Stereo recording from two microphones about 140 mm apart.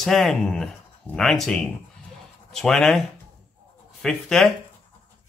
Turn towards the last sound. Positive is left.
turn(degrees=5)  # may be behind; listen again after turning